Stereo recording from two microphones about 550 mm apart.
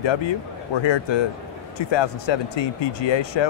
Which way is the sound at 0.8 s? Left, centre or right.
Left.